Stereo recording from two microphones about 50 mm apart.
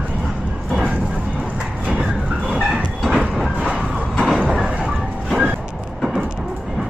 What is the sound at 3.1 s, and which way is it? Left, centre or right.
Train, centre.